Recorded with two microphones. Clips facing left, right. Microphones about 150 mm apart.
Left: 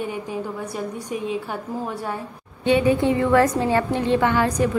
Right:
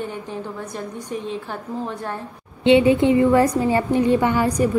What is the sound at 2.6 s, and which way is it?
A woman's voice, 25° right (ahead or behind).